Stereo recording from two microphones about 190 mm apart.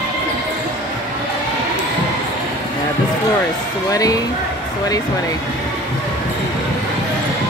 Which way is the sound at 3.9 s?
20° left (ahead or behind).